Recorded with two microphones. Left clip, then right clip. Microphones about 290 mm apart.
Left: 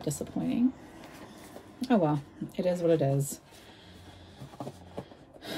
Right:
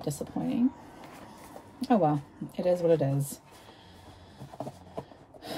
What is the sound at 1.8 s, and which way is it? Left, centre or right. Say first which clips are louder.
Speech: right 2 dB; centre.